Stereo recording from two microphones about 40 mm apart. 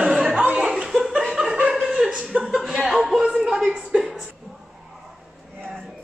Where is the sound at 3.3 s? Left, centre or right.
Centre.